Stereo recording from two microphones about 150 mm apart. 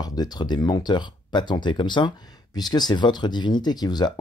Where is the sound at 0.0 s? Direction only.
25° left (ahead or behind).